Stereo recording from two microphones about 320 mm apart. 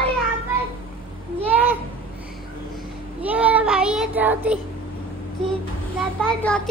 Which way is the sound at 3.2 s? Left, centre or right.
Centre.